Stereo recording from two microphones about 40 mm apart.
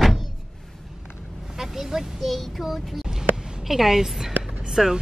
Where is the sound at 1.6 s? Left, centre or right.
Centre.